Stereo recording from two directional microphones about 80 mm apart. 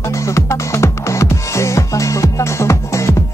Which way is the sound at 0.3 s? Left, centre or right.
Left.